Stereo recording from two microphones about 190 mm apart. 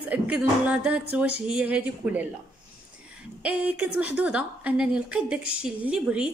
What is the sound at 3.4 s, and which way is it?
A woman's voice, 5° right (ahead or behind).